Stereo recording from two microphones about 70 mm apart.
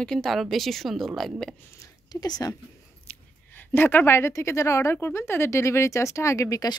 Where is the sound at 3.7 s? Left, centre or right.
Left.